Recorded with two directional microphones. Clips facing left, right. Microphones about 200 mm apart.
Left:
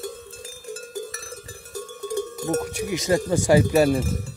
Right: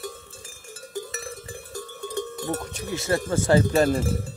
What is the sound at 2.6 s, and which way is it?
Speech, 10° left (ahead or behind).